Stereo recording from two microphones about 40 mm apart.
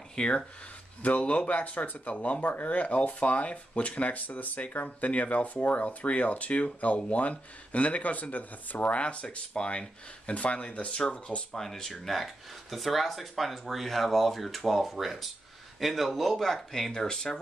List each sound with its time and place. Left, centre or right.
0.1 s speech: left
1.0 s speech: left
2.4 s speech: left
8.9 s speech: left
11.5 s speech: centre
16.9 s speech: centre